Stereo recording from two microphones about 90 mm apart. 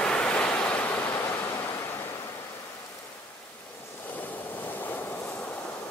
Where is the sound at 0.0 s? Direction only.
10° left (ahead or behind); by 1.7 s 25° left (ahead or behind).